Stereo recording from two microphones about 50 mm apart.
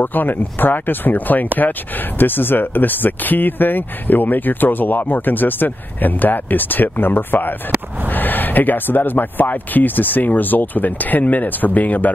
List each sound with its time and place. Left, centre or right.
0.0 s speech: left